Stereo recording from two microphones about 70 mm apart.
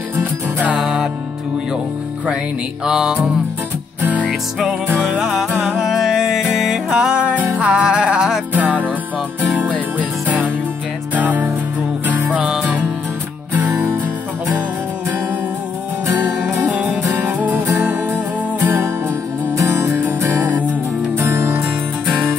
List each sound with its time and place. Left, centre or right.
0.1 s music: right
0.7 s music: centre
2.8 s music: centre
4.3 s music: centre
16.7 s music: centre
19.5 s music: right
20.2 s music: right
21.2 s music: right